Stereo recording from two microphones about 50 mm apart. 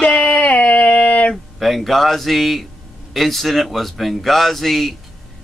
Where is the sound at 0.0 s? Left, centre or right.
Left.